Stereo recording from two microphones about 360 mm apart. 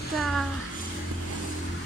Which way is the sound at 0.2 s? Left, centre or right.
Centre.